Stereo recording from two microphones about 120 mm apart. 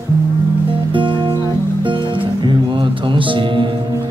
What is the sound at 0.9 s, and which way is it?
Music, 45° right (ahead or behind).